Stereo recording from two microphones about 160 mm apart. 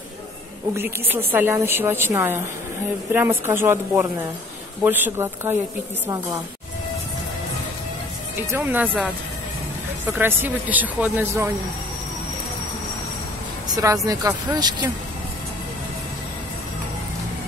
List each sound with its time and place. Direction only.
0.7 s a woman's voice: 15° right (ahead or behind)
8.4 s a woman's voice: 15° right (ahead or behind)
13.7 s a sound: 20° right (ahead or behind)
14.0 s speech: 25° right (ahead or behind)